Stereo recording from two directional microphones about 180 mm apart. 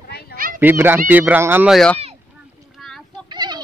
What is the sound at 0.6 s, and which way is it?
Speech, 10° right (ahead or behind).